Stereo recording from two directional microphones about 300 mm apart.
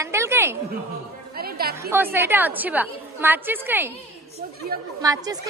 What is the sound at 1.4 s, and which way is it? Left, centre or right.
Music, right.